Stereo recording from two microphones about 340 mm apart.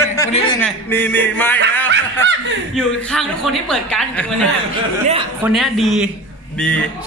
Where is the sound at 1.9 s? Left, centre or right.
Right.